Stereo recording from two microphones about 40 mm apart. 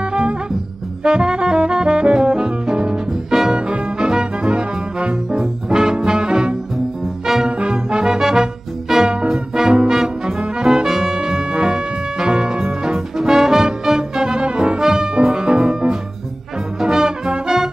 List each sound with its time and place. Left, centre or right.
0.0 s music: right
1.0 s brass instrument: right
3.5 s music: right
9.8 s brass instrument: centre
14.8 s brass instrument: centre
15.1 s music: right